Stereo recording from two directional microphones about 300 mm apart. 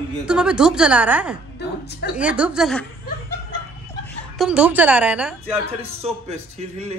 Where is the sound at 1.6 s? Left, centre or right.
Left.